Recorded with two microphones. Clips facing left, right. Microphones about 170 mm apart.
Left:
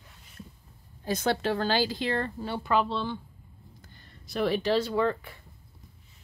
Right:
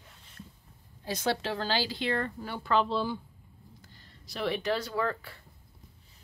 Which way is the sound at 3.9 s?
55° left (ahead or behind).